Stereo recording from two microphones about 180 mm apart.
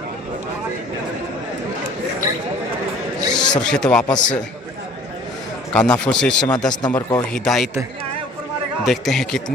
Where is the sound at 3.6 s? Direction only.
5° left (ahead or behind).